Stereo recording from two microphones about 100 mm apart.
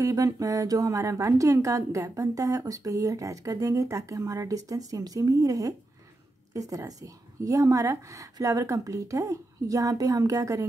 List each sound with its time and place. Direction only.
0.0 s speech: 35° right (ahead or behind)